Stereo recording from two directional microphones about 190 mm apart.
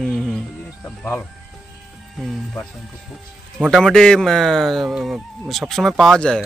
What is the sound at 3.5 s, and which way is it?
Speech, centre (ahead or behind).